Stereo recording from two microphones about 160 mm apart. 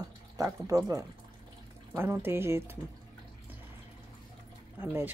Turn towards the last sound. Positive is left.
turn(degrees=-15)  # may be behind; listen again after turning